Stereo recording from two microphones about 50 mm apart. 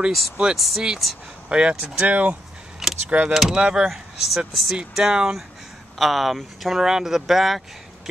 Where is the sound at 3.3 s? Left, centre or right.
Centre.